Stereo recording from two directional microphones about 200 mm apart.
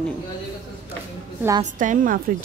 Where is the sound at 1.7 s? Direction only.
40° right (ahead or behind).